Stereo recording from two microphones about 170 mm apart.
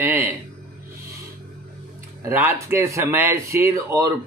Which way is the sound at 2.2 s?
15° right (ahead or behind).